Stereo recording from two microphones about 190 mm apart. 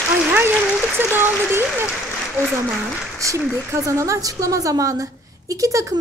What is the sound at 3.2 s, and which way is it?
A woman's voice, 15° right (ahead or behind).